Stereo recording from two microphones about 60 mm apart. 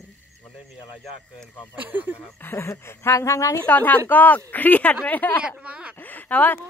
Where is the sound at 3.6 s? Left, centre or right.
Left.